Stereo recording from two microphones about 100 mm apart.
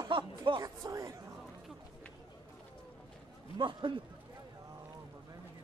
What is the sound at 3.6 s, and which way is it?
Speech, 55° right (ahead or behind).